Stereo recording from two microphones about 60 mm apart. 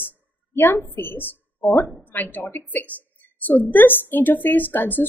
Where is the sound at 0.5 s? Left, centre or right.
Left.